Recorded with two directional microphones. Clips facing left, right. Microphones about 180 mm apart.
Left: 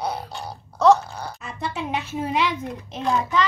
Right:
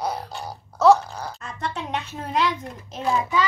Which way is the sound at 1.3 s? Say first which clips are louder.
Left 1 dB; 5° left (ahead or behind).